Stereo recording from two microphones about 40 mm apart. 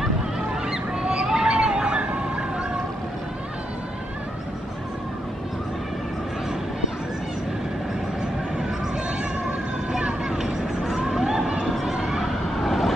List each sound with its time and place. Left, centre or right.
0.7 s a sound: right
10.3 s vehicle: centre
11.7 s run: centre
12.2 s vehicle: centre